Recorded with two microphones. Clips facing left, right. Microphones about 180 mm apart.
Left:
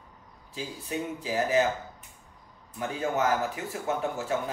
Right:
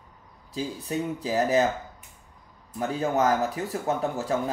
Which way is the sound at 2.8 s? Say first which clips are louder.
Right 4 dB; 35° right (ahead or behind).